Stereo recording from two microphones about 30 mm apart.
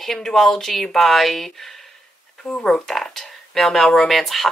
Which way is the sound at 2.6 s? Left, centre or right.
Centre.